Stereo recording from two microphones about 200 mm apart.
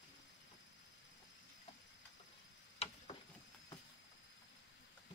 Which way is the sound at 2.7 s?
30° left (ahead or behind).